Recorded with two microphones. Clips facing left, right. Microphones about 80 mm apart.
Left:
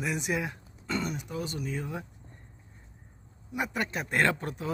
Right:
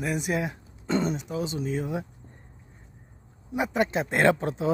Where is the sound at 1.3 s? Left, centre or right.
Centre.